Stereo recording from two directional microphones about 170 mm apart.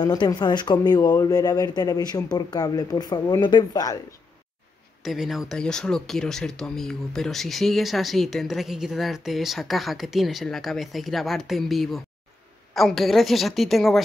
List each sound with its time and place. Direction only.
0.0 s speech: 25° left (ahead or behind)
5.0 s speech: centre (ahead or behind)